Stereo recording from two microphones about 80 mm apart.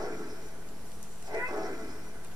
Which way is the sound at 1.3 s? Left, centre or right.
Right.